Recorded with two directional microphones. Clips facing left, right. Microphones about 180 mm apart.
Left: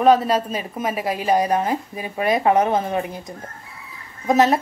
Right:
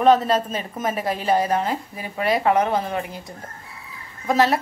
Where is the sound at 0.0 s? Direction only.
10° left (ahead or behind).